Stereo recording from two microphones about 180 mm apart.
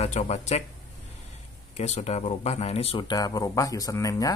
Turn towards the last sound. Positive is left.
turn(degrees=20)  # may be behind; listen again after turning